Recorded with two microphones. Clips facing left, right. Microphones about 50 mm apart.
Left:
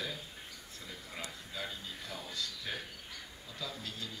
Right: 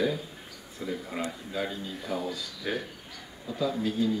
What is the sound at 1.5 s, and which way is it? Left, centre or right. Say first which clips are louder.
A man's voice: right 8 dB; centre.